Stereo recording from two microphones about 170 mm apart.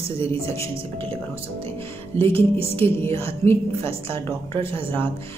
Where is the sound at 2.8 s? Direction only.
15° left (ahead or behind).